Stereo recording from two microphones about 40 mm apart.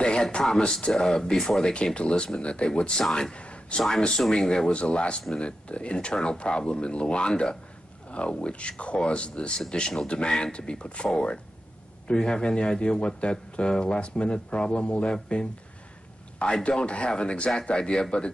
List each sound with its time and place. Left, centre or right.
0.0 s a sound: left
0.6 s speech: centre
1.7 s a man's voice: left
3.3 s a sound: left
4.3 s a man's voice: left
16.6 s a man's voice: left